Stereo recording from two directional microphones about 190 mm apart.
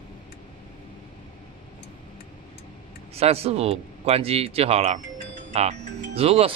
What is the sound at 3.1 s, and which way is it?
Speech, 30° right (ahead or behind).